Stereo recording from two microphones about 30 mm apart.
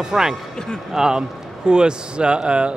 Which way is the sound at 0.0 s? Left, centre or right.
Centre.